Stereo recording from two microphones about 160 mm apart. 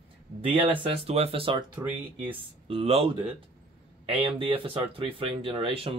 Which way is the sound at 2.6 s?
35° right (ahead or behind).